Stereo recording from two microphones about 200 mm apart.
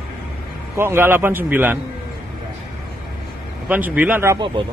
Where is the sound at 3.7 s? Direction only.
10° right (ahead or behind).